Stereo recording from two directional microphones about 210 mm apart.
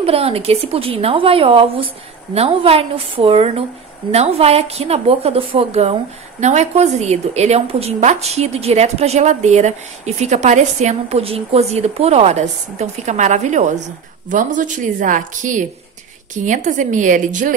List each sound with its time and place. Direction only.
0.0 s a woman's voice: 30° right (ahead or behind)